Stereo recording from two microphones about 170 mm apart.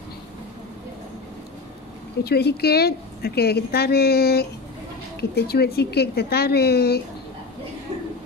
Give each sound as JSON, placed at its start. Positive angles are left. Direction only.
{"t": 2.2, "sound": "a woman's voice", "side_deg": 70}